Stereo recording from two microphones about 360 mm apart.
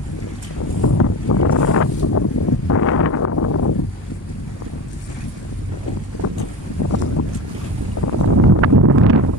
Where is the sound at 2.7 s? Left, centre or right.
Left.